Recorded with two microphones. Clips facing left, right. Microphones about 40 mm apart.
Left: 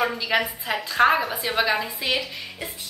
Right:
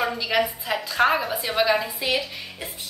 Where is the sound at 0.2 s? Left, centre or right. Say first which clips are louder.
Right 1 dB; centre.